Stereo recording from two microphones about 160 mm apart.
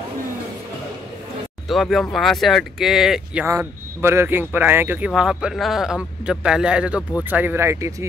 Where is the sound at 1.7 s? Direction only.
Centre (ahead or behind).